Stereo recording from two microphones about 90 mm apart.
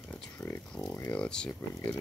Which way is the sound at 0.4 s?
25° left (ahead or behind).